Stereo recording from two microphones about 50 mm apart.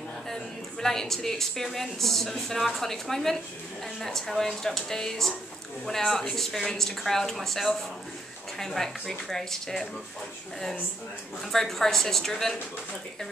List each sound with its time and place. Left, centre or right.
0.3 s a woman's voice: centre
11.5 s a woman's voice: centre